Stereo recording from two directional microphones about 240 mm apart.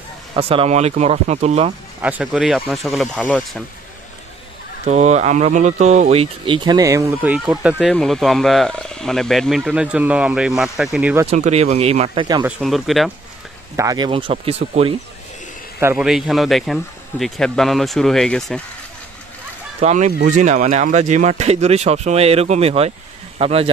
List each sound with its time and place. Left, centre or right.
0.4 s speech: right
2.0 s speech: centre
4.8 s speech: right; by 11.2 s centre
11.2 s speech: right
12.4 s speech: centre
13.7 s speech: centre
15.8 s speech: centre
19.8 s speech: right